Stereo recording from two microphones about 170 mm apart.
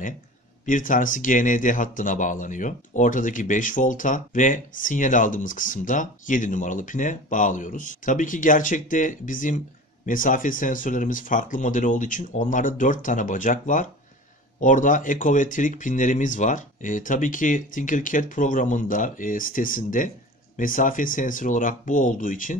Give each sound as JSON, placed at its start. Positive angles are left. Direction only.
{"t": 0.7, "sound": "speech", "side_deg": 50}